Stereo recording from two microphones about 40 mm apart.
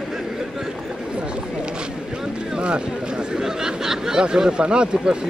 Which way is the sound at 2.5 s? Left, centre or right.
Right.